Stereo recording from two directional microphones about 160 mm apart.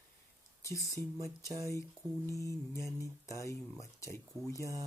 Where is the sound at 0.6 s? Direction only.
20° left (ahead or behind).